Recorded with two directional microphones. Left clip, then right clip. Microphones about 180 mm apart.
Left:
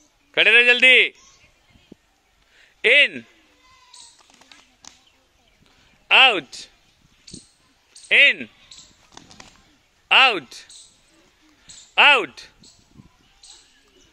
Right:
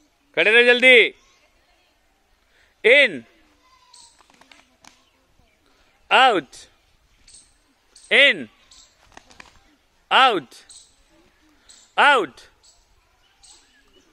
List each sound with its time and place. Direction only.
0.3 s a man's voice: 5° right (ahead or behind)
2.5 s a sound: 10° right (ahead or behind)
6.0 s speech: 15° right (ahead or behind)
7.3 s a sound: 60° right (ahead or behind)
8.1 s speech: 20° right (ahead or behind)
10.0 s a man's voice: 15° right (ahead or behind)
11.9 s speech: 20° right (ahead or behind)